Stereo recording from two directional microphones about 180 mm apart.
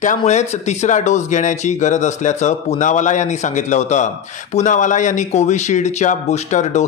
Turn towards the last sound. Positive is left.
turn(degrees=40)  # may be behind; listen again after turning